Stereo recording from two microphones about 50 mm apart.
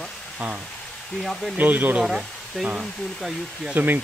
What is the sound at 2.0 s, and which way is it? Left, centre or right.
Speech, centre.